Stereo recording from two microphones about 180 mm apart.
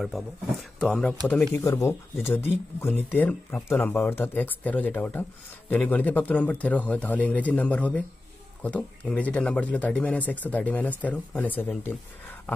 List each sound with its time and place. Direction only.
0.0 s speech: centre (ahead or behind)
1.5 s speech: 15° left (ahead or behind)